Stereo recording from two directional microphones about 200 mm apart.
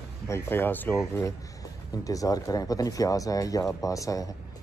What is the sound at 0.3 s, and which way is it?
Speech, 10° left (ahead or behind).